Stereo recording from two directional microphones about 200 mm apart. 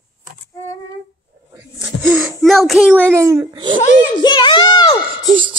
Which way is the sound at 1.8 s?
5° right (ahead or behind).